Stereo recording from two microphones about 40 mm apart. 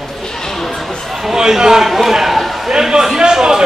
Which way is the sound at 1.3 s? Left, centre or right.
Centre.